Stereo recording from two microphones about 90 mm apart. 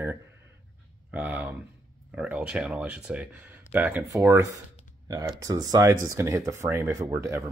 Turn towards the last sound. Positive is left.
turn(degrees=-30)  # may be behind; listen again after turning